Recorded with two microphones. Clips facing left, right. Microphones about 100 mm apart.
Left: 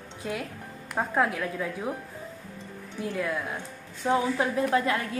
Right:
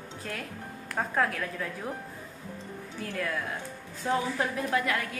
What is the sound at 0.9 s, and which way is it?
A woman's voice, 15° left (ahead or behind).